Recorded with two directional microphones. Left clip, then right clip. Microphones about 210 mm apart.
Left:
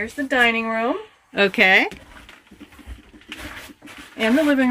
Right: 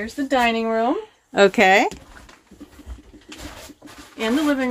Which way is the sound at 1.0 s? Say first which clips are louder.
Right 4 dB; 20° right (ahead or behind).